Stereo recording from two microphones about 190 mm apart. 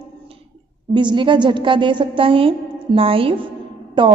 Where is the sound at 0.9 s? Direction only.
25° right (ahead or behind).